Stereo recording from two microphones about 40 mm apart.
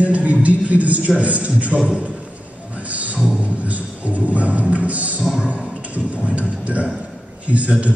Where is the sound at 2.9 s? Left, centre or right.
Right.